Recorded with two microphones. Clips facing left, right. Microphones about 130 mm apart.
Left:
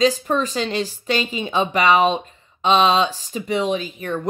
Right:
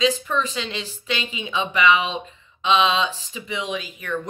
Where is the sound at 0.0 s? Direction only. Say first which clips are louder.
Left 3 dB; 40° left (ahead or behind).